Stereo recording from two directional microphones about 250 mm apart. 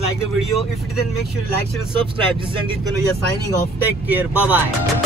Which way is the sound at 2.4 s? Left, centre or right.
Centre.